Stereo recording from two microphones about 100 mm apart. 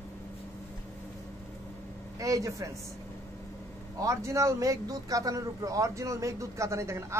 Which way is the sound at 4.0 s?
30° right (ahead or behind).